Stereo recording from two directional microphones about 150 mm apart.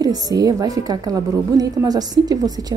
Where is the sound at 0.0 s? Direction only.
25° right (ahead or behind).